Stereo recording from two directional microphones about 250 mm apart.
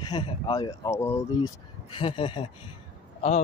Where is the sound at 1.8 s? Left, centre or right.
Left.